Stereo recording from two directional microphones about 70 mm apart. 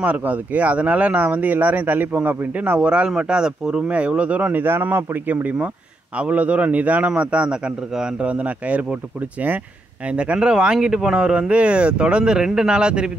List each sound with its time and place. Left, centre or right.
0.0 s speech: right
10.0 s speech: centre